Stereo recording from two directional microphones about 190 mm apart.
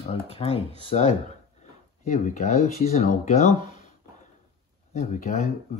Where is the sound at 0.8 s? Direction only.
35° left (ahead or behind).